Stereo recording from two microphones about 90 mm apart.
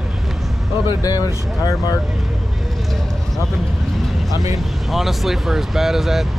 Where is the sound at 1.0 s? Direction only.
40° left (ahead or behind).